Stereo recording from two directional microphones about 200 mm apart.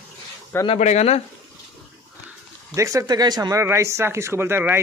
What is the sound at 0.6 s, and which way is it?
Speech, 35° left (ahead or behind).